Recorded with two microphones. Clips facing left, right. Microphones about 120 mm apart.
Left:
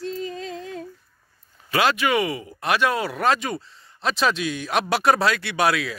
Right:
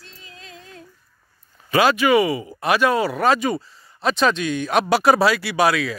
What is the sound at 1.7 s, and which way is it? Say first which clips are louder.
Speech: right 5 dB; centre (ahead or behind).